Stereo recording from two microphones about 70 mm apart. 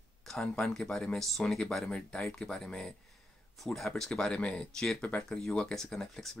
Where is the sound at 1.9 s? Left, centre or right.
Centre.